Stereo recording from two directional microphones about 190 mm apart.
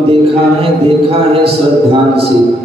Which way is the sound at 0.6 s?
30° right (ahead or behind).